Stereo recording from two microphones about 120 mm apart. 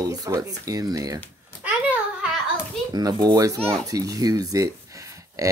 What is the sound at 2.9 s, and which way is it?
Speech, 35° right (ahead or behind).